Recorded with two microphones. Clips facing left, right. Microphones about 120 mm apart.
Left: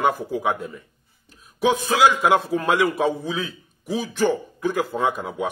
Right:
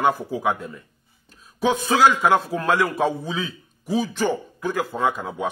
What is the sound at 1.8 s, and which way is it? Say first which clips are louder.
Speech: right 2 dB; 10° left (ahead or behind).